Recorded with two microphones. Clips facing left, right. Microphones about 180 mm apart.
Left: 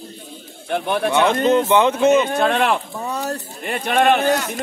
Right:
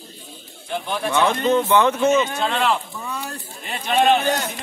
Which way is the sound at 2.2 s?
60° left (ahead or behind).